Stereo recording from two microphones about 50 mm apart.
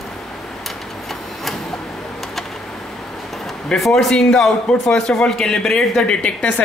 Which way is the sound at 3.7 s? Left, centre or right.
Centre.